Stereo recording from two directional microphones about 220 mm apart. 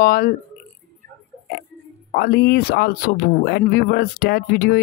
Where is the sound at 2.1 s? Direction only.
45° left (ahead or behind).